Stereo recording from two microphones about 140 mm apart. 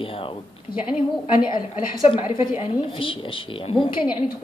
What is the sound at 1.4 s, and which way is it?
Speech, 35° left (ahead or behind).